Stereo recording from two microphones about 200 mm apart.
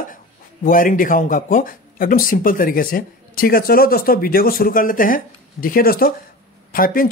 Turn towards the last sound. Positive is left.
turn(degrees=45)  # may be behind; listen again after turning